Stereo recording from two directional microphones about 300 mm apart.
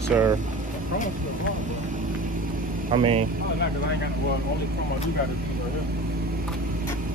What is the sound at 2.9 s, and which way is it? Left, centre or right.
Speech, centre.